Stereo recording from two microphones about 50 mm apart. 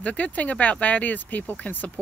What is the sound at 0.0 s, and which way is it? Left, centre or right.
Speech, left.